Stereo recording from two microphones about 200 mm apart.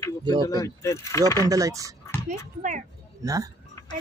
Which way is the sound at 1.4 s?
15° right (ahead or behind).